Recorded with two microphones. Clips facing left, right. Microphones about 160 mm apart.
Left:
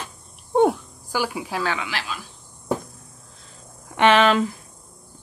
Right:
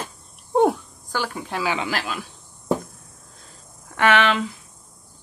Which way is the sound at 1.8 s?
50° right (ahead or behind).